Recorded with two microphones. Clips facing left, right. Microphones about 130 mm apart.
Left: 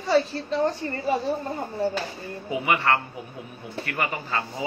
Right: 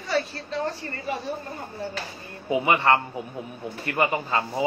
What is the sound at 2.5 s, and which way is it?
Speech, 25° right (ahead or behind).